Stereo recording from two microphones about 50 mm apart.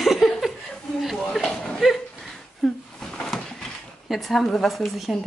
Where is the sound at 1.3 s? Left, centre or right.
Centre.